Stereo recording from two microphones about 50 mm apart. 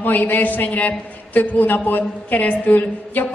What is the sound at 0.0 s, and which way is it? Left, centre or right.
A man's voice, left.